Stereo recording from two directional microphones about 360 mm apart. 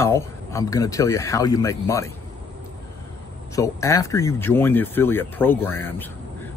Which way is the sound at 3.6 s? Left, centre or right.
Centre.